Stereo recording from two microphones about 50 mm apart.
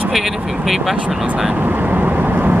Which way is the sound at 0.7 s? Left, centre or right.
Centre.